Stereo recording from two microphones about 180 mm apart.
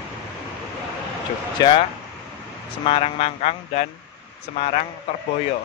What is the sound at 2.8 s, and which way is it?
Speech, 35° left (ahead or behind).